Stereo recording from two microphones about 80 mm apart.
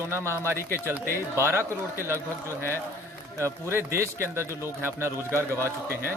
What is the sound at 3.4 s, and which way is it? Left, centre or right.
A man's voice, right.